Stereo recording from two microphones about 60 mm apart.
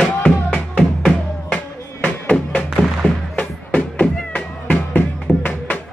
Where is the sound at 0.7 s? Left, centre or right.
Centre.